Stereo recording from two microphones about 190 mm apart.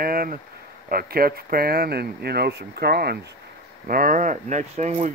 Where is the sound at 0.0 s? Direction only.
50° right (ahead or behind).